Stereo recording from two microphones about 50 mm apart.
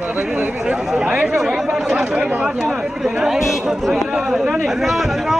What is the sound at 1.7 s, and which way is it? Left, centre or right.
Speech, centre.